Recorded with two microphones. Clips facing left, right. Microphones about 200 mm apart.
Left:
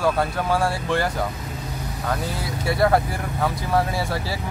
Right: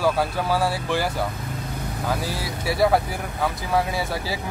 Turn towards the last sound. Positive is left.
turn(degrees=0)  # may be behind; listen again after turning